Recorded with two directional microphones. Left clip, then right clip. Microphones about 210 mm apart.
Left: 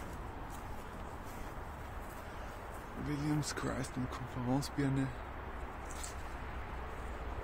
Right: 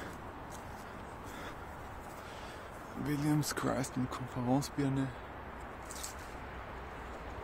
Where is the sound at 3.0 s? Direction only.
25° right (ahead or behind); by 5.1 s 10° right (ahead or behind).